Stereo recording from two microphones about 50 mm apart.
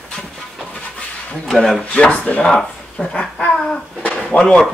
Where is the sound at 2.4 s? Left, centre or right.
Centre.